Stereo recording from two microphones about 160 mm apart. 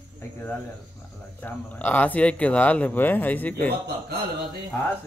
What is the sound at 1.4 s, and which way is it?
Speech, 10° left (ahead or behind).